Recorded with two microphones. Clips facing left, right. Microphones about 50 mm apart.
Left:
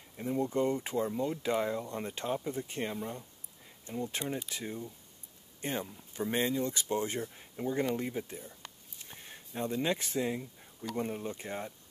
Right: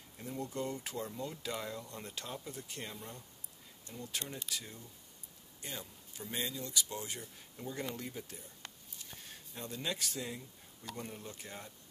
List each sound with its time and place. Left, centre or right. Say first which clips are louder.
0.2 s speech: left 9 dB; left
9.0 s a sound: left 3 dB; left
11.0 s speech: left 11 dB; left